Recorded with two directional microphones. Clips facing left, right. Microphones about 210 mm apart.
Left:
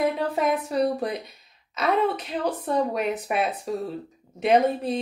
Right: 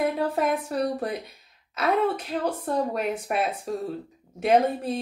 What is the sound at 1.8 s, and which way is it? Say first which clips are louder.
Speech: even; centre (ahead or behind).